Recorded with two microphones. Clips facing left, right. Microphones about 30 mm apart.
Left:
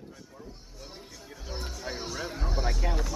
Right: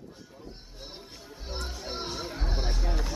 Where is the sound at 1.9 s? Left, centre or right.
Right.